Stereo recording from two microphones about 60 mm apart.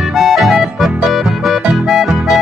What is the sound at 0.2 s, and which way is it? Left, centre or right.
Music, centre.